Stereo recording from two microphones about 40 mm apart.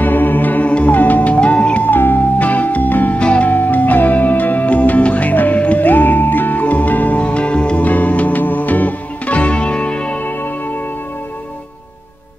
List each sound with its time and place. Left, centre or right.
0.0 s music: left
1.9 s music: left
3.2 s music: left
3.4 s music: left
7.8 s music: left
10.2 s music: left